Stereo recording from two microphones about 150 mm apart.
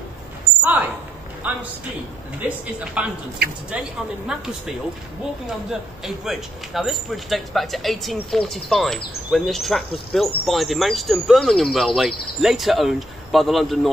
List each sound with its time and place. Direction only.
0.6 s a sound: 10° right (ahead or behind)
1.5 s speech: 10° right (ahead or behind)
3.4 s speech: 90° right
5.5 s speech: centre (ahead or behind)